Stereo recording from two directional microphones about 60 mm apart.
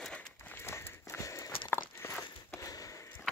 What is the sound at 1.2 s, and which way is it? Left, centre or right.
Walk, left.